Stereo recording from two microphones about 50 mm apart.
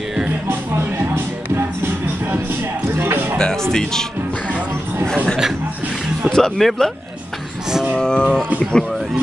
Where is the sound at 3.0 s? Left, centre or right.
Right.